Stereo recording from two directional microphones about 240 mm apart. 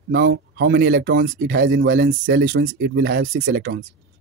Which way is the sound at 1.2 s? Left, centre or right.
Right.